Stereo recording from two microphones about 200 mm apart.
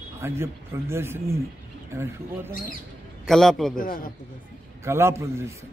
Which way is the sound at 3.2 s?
Centre (ahead or behind).